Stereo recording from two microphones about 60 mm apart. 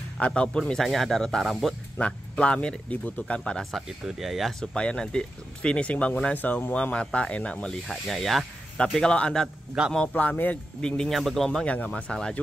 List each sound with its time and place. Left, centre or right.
0.2 s speech: centre
0.7 s speech: centre
2.0 s speech: centre
4.0 s speech: centre
4.7 s speech: centre
6.3 s speech: left
6.7 s speech: centre
7.9 s speech: centre
8.7 s speech: centre
9.8 s a man's voice: centre
10.3 s speech: left
10.8 s speech: centre
11.1 s speech: centre
11.6 s speech: left